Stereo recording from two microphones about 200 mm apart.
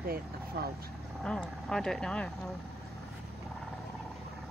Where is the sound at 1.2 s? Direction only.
Centre (ahead or behind).